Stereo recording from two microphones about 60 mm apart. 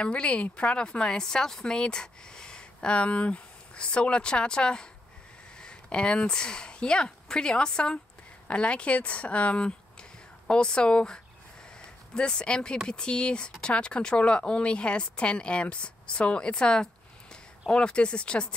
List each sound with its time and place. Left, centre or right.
0.0 s a woman's voice: centre